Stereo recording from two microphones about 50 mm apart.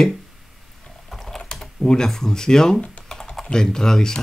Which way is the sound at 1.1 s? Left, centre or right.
Centre.